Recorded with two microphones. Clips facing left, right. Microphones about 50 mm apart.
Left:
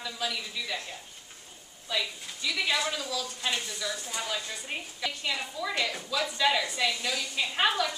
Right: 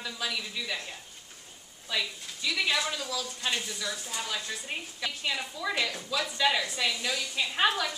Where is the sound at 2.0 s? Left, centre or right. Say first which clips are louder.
Even; centre.